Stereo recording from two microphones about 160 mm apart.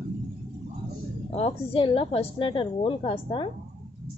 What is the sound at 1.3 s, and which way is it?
A woman's voice, 35° left (ahead or behind).